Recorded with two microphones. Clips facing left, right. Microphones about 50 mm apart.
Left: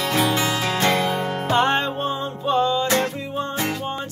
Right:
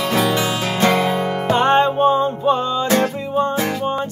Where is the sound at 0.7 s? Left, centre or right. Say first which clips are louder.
Right 5 dB; right.